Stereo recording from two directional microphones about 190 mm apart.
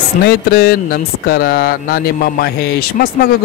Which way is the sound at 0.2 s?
55° left (ahead or behind).